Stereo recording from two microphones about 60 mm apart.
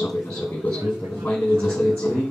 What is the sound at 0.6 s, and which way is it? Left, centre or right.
Speech, left.